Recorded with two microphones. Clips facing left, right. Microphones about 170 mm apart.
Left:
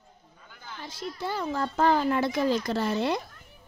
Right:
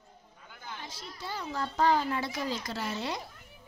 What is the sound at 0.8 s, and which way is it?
Speech, 50° left (ahead or behind).